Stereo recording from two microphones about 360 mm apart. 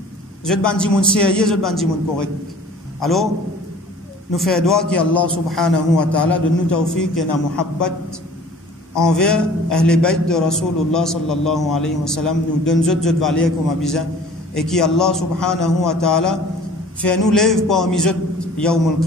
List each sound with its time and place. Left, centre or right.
0.5 s a man's voice: centre
4.4 s a man's voice: centre
8.9 s a man's voice: centre